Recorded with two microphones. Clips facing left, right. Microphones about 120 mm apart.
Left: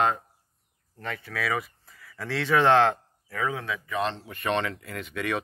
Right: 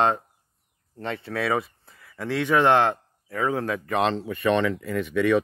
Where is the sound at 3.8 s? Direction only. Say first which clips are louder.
Right 5 dB; 85° right.